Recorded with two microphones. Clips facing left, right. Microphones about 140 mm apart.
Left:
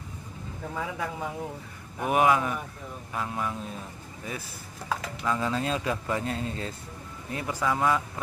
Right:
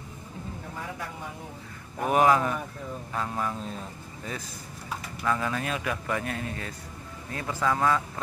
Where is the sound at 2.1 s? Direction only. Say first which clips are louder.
Right 1 dB; 5° left (ahead or behind).